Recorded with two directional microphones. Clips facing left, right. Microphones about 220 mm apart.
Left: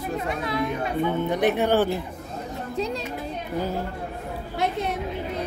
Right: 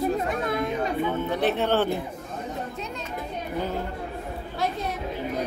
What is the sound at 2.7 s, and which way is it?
Speech, 35° left (ahead or behind).